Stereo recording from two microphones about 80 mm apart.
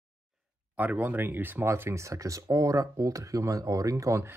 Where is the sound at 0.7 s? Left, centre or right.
Centre.